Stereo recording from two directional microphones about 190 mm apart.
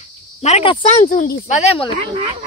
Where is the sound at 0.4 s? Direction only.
35° left (ahead or behind).